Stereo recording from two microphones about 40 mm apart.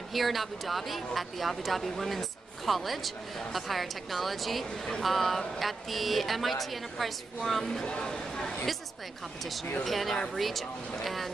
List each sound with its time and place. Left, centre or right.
0.1 s speech: centre
7.8 s speech: left
9.4 s speech: centre